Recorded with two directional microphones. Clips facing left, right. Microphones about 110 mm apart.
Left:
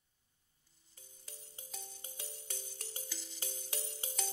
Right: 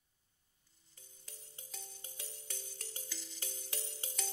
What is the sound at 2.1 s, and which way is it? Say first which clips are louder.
Music: left 2 dB; 20° left (ahead or behind).